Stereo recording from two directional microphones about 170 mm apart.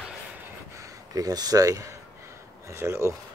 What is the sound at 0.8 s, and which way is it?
Speech, 20° right (ahead or behind).